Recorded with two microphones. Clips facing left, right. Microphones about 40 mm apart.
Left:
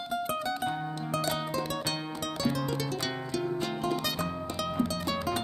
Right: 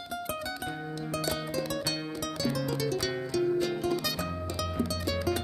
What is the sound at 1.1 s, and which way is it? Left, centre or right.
Music, centre.